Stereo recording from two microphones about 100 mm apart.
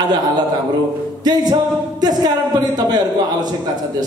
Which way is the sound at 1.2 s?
45° right (ahead or behind).